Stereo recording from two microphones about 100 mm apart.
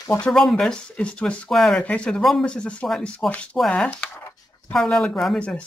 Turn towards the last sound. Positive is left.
turn(degrees=5)  # may be behind; listen again after turning